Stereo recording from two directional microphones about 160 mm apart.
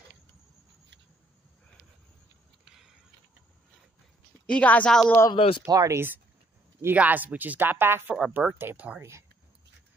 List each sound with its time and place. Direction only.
4.5 s a woman's voice: 10° left (ahead or behind)
5.3 s speech: 35° left (ahead or behind)
5.7 s speech: 20° right (ahead or behind)